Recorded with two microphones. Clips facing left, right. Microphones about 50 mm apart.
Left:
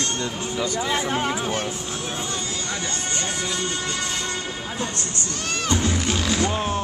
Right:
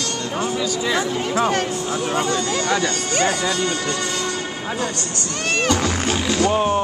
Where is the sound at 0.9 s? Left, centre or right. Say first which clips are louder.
Right 4 dB; right.